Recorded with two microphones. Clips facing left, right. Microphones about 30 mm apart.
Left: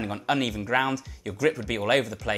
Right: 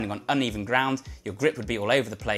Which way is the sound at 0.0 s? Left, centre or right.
Centre.